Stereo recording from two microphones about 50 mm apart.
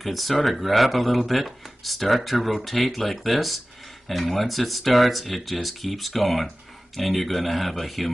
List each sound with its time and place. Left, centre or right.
0.0 s speech: centre